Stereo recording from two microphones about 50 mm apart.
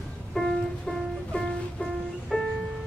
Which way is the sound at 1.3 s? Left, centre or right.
Left.